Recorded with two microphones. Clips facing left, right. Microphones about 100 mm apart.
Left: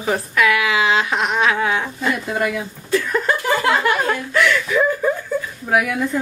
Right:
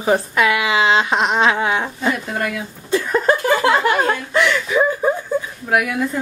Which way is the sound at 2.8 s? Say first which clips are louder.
Right 3 dB; 25° right (ahead or behind).